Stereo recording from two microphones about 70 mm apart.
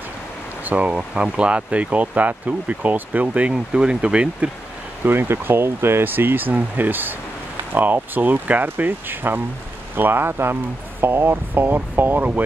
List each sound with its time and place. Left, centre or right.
0.7 s speech: centre
5.0 s speech: right